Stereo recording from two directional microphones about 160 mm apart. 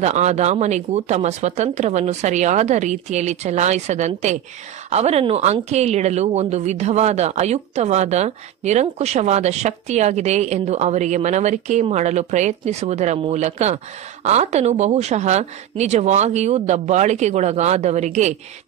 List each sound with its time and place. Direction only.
0.0 s speech: 45° right (ahead or behind)